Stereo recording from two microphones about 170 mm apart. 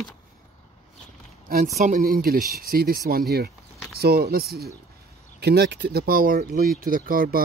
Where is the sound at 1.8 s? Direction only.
45° right (ahead or behind).